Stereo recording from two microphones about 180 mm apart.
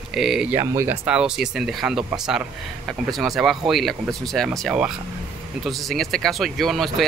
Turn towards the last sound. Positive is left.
turn(degrees=0)  # may be behind; listen again after turning